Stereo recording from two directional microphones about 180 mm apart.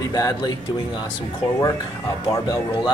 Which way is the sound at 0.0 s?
20° left (ahead or behind).